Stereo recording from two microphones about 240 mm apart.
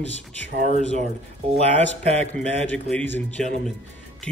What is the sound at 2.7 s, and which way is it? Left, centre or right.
Speech, centre.